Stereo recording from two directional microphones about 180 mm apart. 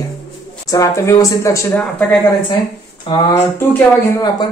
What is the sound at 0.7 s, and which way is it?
Speech, 15° left (ahead or behind).